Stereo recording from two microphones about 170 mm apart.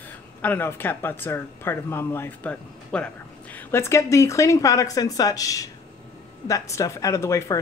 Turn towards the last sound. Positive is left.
turn(degrees=15)  # may be behind; listen again after turning